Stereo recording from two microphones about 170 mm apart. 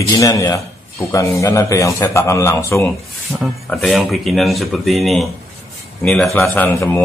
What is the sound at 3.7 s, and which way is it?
A man's voice, centre (ahead or behind).